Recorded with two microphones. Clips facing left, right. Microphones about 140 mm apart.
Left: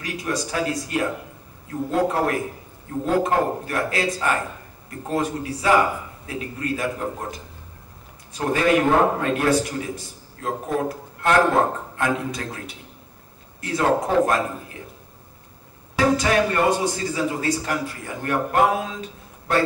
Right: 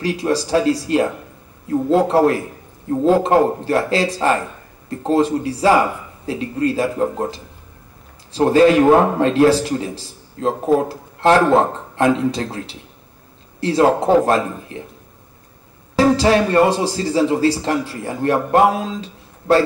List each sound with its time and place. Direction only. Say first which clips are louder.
0.0 s a man's voice: right 8 dB; 30° right (ahead or behind)
16.0 s a man's voice: right 5 dB; 30° right (ahead or behind)